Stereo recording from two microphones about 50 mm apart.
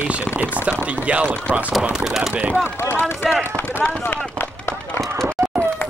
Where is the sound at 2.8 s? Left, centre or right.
Left.